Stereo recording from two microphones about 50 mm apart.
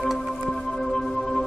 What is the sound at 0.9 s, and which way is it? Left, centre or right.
Music, centre.